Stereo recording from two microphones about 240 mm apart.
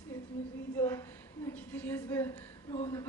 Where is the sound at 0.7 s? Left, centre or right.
Centre.